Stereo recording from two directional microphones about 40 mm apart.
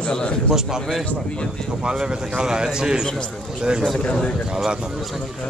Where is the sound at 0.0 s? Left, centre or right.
Left.